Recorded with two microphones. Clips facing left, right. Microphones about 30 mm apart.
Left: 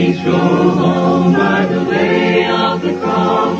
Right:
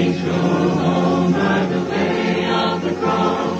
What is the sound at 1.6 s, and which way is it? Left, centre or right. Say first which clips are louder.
Choir: left 5 dB; left.